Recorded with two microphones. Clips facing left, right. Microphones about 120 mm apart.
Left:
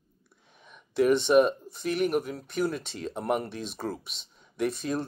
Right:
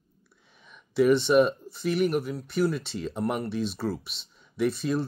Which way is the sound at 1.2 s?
Centre (ahead or behind).